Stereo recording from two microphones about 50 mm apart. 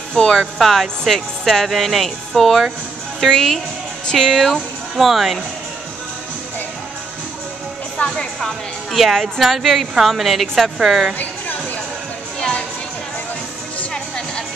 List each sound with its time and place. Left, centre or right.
0.1 s a woman's voice: centre
8.1 s a woman's voice: centre
11.1 s a sound: left
13.9 s music: centre